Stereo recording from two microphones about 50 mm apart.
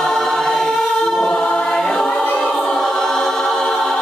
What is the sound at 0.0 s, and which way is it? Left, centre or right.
Choir, centre.